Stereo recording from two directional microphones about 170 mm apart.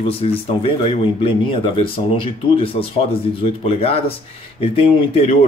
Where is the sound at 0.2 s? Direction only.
35° left (ahead or behind).